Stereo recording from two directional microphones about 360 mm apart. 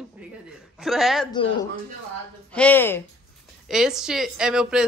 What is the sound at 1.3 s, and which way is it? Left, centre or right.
A woman's voice, centre.